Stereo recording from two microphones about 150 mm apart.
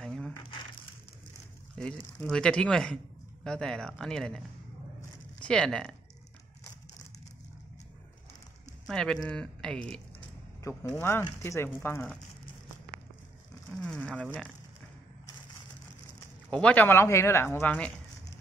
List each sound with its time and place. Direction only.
0.0 s crumpling: centre (ahead or behind)
1.8 s speech: 5° left (ahead or behind)
5.4 s speech: 5° left (ahead or behind)
8.8 s speech: 5° left (ahead or behind)
10.6 s speech: 20° left (ahead or behind)
13.7 s speech: 5° left (ahead or behind)
16.4 s speech: 5° left (ahead or behind)